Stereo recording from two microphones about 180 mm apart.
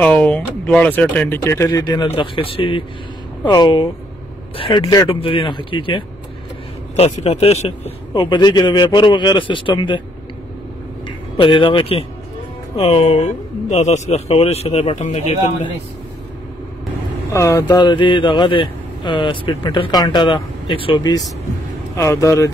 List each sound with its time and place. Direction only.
0.0 s speech: 5° left (ahead or behind)
2.1 s speech: 30° left (ahead or behind)
11.1 s speech: 30° left (ahead or behind)
17.3 s speech: 15° left (ahead or behind)